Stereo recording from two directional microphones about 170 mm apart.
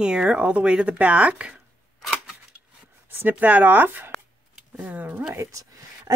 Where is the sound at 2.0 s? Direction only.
Centre (ahead or behind).